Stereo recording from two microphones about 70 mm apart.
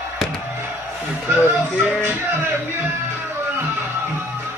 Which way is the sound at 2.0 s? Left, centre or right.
Right.